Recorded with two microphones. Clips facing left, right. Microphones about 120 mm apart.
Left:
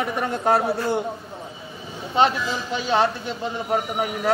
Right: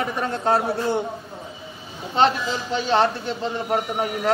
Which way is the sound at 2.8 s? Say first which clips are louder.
Right 1 dB; 10° left (ahead or behind).